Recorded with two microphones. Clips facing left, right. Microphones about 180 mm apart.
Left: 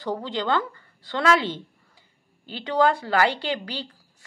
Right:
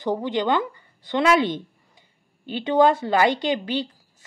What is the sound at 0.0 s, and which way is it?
Speech, 20° right (ahead or behind).